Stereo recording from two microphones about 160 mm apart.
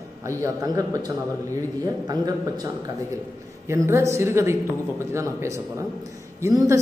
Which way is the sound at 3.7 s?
15° right (ahead or behind).